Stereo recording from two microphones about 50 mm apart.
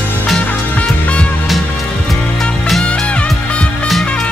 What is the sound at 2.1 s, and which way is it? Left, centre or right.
Music, centre.